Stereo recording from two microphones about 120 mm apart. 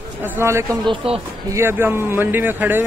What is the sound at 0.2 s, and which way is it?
Speech, 20° right (ahead or behind).